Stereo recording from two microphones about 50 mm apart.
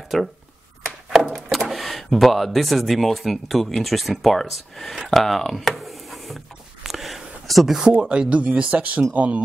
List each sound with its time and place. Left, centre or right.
0.1 s speech: centre
1.7 s speech: centre
5.1 s a sound: centre
7.9 s speech: centre